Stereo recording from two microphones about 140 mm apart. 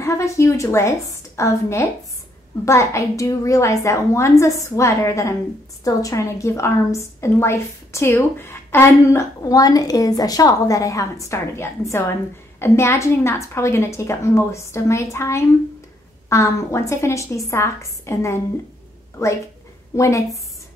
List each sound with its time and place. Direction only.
0.0 s a woman's voice: 20° left (ahead or behind)
20.0 s a woman's voice: 20° left (ahead or behind)